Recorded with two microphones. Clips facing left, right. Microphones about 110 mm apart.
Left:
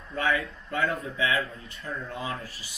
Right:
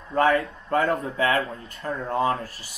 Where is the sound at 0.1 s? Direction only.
45° right (ahead or behind).